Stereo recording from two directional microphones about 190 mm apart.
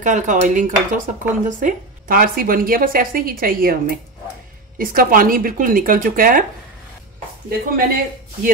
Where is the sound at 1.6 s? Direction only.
50° right (ahead or behind).